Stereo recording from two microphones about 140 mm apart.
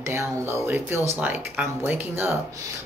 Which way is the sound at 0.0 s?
20° right (ahead or behind).